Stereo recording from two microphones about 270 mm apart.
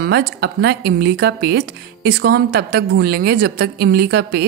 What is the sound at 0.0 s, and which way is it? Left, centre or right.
Speech, right.